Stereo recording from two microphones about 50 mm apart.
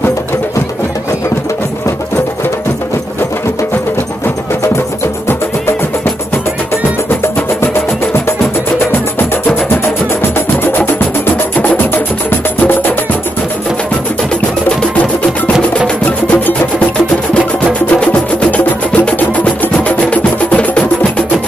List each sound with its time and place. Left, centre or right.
7.6 s music: left
10.9 s music: left
18.0 s music: left